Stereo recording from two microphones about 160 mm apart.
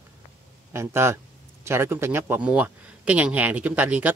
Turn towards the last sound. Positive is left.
turn(degrees=-10)  # may be behind; listen again after turning